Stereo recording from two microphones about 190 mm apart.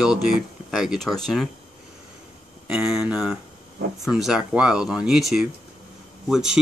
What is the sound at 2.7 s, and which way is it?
Speech, 5° right (ahead or behind).